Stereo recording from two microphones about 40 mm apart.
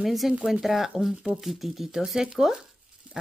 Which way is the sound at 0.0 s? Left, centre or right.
Centre.